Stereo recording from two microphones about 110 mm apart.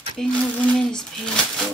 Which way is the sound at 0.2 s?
10° left (ahead or behind).